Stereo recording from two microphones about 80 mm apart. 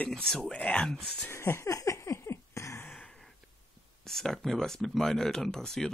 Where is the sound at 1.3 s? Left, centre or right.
Left.